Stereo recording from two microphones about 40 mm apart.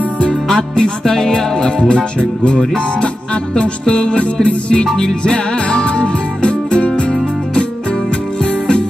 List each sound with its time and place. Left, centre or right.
0.3 s music: centre
2.0 s music: left
4.9 s music: centre